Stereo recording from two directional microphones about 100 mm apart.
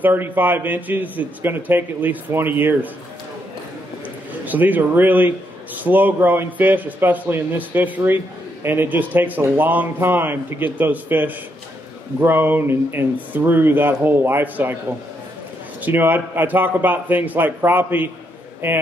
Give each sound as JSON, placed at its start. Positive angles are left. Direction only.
{"t": 0.0, "sound": "a man's voice", "side_deg": -20}
{"t": 4.5, "sound": "a man's voice", "side_deg": -15}
{"t": 15.8, "sound": "a man's voice", "side_deg": -20}